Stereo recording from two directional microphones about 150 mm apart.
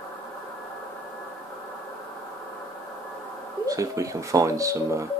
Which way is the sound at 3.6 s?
20° right (ahead or behind).